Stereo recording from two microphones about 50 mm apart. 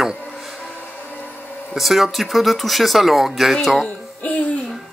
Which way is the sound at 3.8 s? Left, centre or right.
Left.